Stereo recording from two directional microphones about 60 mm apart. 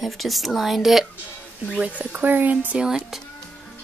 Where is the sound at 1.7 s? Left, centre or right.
Right.